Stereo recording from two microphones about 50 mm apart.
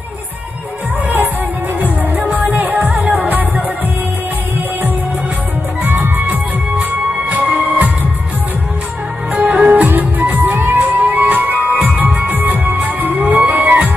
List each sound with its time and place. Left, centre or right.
2.3 s music: right
5.9 s music: right
9.3 s music: right
9.8 s music: right
12.1 s music: right
12.4 s music: right